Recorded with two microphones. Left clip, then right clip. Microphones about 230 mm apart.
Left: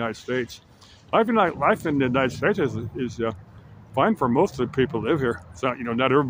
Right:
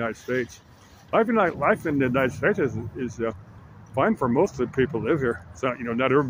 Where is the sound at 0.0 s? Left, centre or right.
Centre.